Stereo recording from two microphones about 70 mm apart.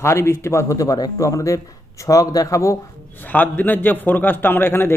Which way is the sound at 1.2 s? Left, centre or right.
Left.